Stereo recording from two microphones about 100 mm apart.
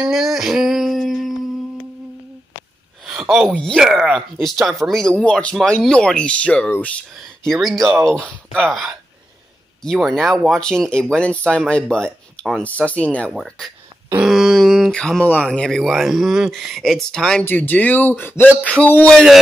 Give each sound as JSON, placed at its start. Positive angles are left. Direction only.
{"t": 0.0, "sound": "a sound", "side_deg": -5}
{"t": 3.1, "sound": "a sound", "side_deg": -5}
{"t": 3.5, "sound": "speech", "side_deg": 5}
{"t": 3.8, "sound": "speech", "side_deg": -5}
{"t": 5.1, "sound": "speech", "side_deg": 10}
{"t": 7.4, "sound": "speech", "side_deg": 5}
{"t": 9.8, "sound": "speech", "side_deg": 5}
{"t": 13.3, "sound": "speech", "side_deg": 0}
{"t": 17.5, "sound": "speech", "side_deg": 15}
{"t": 19.1, "sound": "speech", "side_deg": 0}